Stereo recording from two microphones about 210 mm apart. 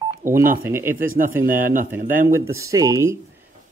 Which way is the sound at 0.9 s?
40° right (ahead or behind).